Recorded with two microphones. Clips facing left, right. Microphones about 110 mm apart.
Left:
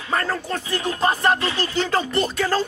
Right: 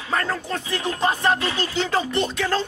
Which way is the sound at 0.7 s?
Centre (ahead or behind).